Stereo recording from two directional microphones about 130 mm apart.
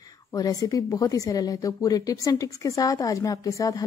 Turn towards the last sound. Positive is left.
turn(degrees=25)  # may be behind; listen again after turning